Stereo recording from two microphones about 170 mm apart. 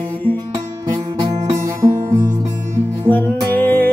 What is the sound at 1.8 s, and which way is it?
Music, 15° right (ahead or behind).